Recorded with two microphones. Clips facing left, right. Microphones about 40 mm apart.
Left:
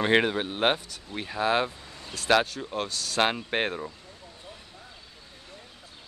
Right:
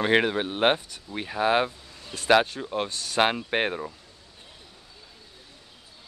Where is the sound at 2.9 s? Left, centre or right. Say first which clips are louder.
Left 1 dB; right.